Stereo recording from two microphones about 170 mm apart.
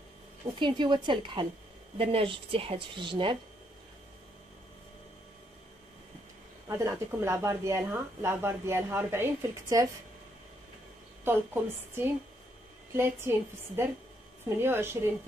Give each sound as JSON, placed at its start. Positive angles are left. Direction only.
{"t": 0.6, "sound": "a woman's voice", "side_deg": -25}
{"t": 6.7, "sound": "speech", "side_deg": -15}
{"t": 11.2, "sound": "speech", "side_deg": -15}